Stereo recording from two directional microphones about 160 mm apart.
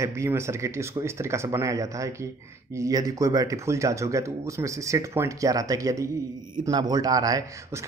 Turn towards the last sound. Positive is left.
turn(degrees=-20)  # may be behind; listen again after turning